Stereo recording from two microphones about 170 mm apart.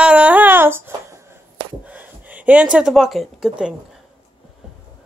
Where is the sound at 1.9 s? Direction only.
10° right (ahead or behind).